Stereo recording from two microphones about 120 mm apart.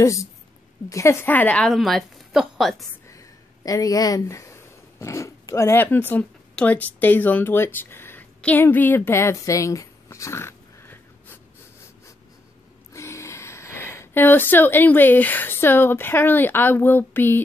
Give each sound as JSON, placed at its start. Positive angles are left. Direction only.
{"t": 0.0, "sound": "a woman's voice", "side_deg": 25}
{"t": 3.1, "sound": "speech", "side_deg": 25}
{"t": 12.9, "sound": "speech", "side_deg": 25}